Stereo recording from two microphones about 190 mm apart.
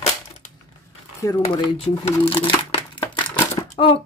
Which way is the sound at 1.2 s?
25° left (ahead or behind).